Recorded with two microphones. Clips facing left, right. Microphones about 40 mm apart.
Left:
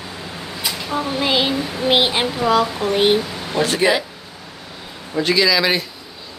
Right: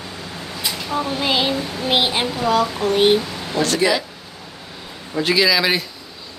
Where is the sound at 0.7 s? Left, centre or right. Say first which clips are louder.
Even; centre; by 4.1 s left.